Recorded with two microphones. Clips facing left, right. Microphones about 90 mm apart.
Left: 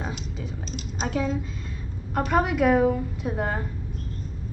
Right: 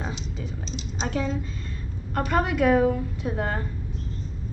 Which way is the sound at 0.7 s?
50° left (ahead or behind).